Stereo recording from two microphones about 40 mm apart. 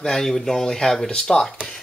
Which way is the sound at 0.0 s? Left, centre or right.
Centre.